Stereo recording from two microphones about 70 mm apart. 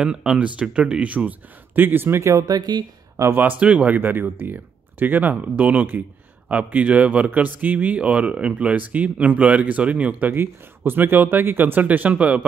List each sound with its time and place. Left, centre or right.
0.0 s speech: centre
1.8 s speech: right
2.4 s speech: right
3.3 s speech: right
10.3 s speech: right